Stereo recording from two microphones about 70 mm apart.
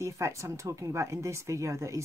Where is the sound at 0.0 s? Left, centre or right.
Right.